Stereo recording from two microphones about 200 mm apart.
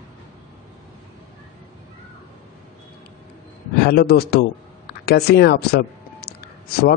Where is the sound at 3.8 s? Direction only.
50° left (ahead or behind).